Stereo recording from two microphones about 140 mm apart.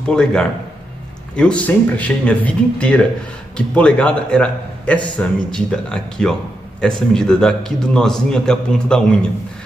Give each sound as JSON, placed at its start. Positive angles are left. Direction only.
{"t": 0.0, "sound": "a man's voice", "side_deg": 5}